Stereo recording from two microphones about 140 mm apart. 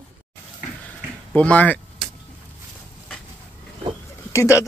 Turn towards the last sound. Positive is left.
turn(degrees=20)  # may be behind; listen again after turning